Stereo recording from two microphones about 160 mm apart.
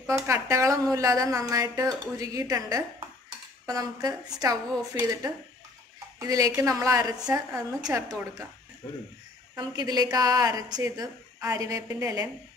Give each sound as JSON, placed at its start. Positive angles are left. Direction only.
{"t": 0.0, "sound": "a woman's voice", "side_deg": -15}
{"t": 9.6, "sound": "a woman's voice", "side_deg": -25}